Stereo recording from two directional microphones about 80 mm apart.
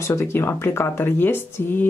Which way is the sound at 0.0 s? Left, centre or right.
Left.